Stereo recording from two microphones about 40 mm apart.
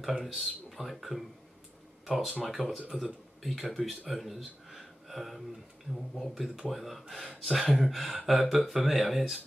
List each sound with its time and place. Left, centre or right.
0.0 s speech: centre
3.8 s speech: left
4.1 s a sound: centre
6.1 s speech: centre